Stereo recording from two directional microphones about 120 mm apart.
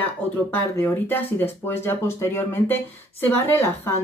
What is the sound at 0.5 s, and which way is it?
Speech, 20° left (ahead or behind).